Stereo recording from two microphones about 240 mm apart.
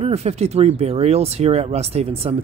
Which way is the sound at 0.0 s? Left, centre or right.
Right.